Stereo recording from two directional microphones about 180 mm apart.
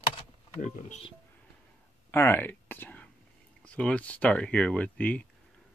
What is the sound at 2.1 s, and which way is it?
Speech, 15° left (ahead or behind).